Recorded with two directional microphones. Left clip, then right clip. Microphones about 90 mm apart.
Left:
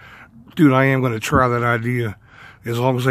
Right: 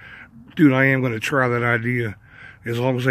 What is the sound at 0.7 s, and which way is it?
Speech, 55° left (ahead or behind).